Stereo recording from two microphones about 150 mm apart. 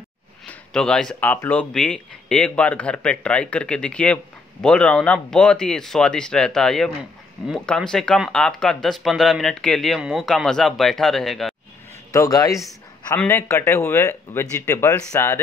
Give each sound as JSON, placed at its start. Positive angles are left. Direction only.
{"t": 0.5, "sound": "speech", "side_deg": 5}
{"t": 12.1, "sound": "a man's voice", "side_deg": 20}